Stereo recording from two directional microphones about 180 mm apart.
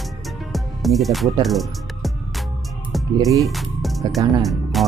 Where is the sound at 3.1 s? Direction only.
20° right (ahead or behind).